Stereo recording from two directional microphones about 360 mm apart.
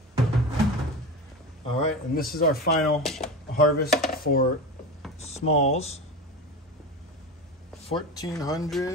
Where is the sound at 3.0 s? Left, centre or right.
Centre.